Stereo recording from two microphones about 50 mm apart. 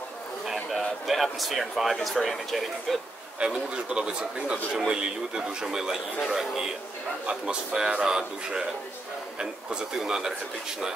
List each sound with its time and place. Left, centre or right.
0.5 s speech: centre
3.3 s a man's voice: centre
7.2 s a man's voice: centre